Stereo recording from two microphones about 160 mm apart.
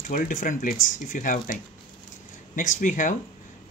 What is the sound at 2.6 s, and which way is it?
Speech, 55° left (ahead or behind).